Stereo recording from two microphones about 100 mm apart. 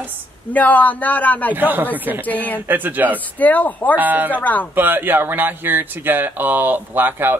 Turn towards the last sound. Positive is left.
turn(degrees=-20)  # may be behind; listen again after turning